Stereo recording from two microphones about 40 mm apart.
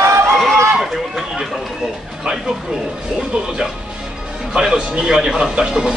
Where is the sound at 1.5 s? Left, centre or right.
Centre.